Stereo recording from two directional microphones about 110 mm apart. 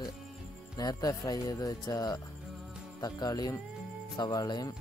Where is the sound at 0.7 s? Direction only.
35° left (ahead or behind).